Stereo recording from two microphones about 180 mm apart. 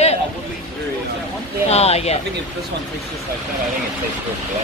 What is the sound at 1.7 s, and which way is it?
Speech, 35° left (ahead or behind).